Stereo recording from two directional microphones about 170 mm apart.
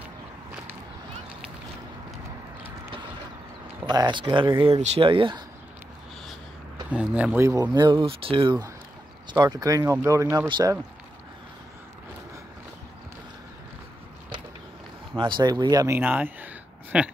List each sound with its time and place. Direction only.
3.8 s speech: 25° right (ahead or behind)
6.9 s speech: 5° right (ahead or behind); by 10.8 s 20° right (ahead or behind)
15.1 s speech: 30° right (ahead or behind)
16.0 s speech: 10° right (ahead or behind)